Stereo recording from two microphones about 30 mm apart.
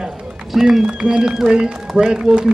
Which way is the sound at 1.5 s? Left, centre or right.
Right.